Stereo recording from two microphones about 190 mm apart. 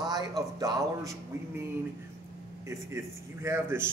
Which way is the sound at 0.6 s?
20° right (ahead or behind).